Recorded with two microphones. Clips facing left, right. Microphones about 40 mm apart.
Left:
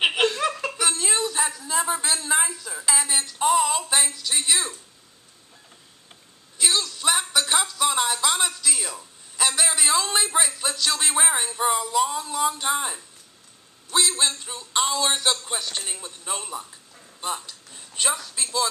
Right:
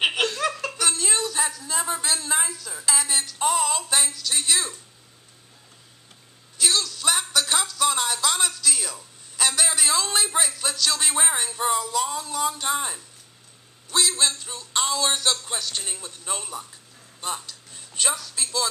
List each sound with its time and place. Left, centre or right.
0.0 s speech: centre
6.6 s speech: centre
17.2 s a sound: centre